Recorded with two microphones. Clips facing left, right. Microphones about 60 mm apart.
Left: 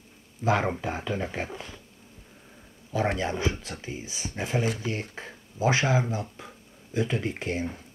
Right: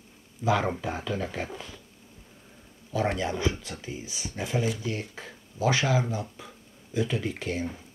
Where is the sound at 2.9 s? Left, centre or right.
Left.